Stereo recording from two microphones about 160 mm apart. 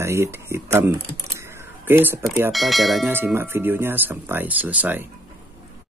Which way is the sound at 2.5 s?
Centre (ahead or behind).